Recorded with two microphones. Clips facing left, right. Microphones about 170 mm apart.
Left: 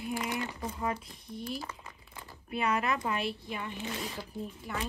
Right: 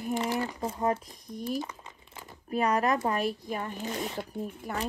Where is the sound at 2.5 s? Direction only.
40° right (ahead or behind).